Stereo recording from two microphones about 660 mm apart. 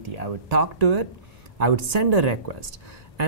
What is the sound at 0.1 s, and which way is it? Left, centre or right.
Speech, right.